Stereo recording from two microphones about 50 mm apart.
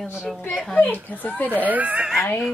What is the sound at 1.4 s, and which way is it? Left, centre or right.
Speech, right.